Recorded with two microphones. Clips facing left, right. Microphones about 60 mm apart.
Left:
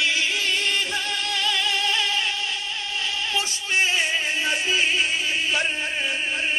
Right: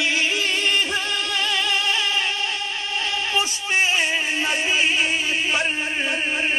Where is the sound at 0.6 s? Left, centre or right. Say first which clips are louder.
Right 3 dB; right.